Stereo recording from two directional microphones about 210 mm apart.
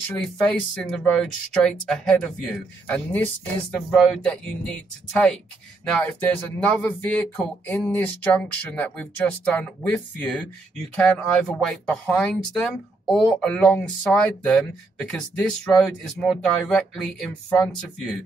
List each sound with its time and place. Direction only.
0.1 s speech: centre (ahead or behind)